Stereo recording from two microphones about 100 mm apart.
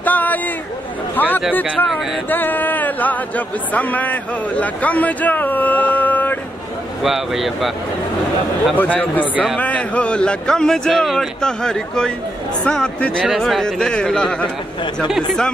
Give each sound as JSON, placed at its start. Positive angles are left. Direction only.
{"t": 0.0, "sound": "a sound", "side_deg": 15}
{"t": 1.1, "sound": "speech", "side_deg": 20}
{"t": 7.0, "sound": "speech", "side_deg": -5}
{"t": 8.7, "sound": "speech", "side_deg": 15}
{"t": 9.3, "sound": "a man's voice", "side_deg": -10}
{"t": 9.6, "sound": "speech", "side_deg": 15}
{"t": 15.0, "sound": "speech", "side_deg": -5}